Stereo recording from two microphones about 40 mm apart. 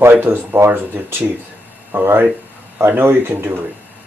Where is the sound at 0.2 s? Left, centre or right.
Right.